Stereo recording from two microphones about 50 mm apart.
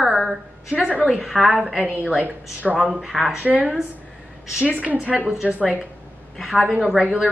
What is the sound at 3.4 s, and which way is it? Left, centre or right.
A woman's voice, right.